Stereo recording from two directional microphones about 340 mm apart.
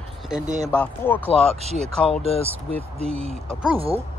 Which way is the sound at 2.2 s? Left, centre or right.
Centre.